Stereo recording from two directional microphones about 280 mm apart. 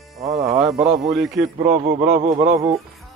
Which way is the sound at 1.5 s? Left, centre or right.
Right.